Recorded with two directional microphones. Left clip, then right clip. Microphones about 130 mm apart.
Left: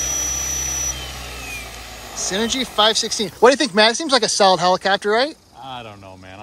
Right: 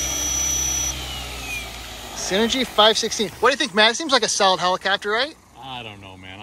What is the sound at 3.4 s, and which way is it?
Speech, 50° left (ahead or behind).